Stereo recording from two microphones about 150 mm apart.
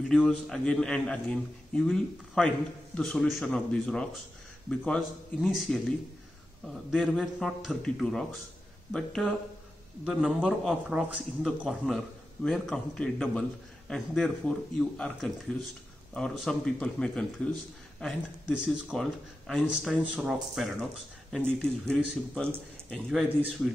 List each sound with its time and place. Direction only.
0.1 s speech: centre (ahead or behind)
23.2 s a man's voice: 10° right (ahead or behind)